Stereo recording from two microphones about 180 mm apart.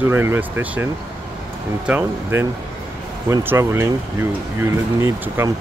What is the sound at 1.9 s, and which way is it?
Speech, 15° right (ahead or behind).